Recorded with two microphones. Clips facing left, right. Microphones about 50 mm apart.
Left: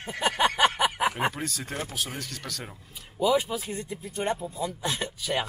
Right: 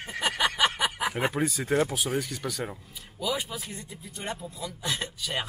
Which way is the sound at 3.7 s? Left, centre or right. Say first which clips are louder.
Left 7 dB; left.